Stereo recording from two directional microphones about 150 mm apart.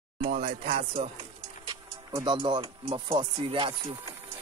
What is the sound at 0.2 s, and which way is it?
Speech, 45° right (ahead or behind).